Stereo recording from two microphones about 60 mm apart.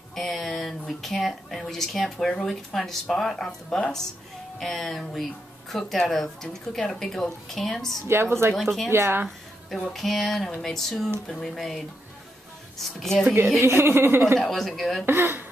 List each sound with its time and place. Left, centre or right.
0.1 s a woman's voice: centre
8.1 s speech: right
8.5 s speech: centre
8.9 s speech: right
9.9 s a woman's voice: centre
13.6 s speech: right
14.4 s speech: centre
15.0 s speech: right